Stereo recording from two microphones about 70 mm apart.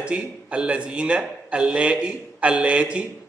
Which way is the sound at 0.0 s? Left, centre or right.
Centre.